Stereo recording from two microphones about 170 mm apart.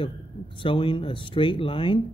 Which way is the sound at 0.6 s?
30° left (ahead or behind).